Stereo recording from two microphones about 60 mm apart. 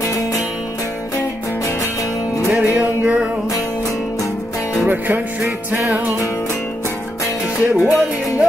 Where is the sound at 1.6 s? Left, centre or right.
Left.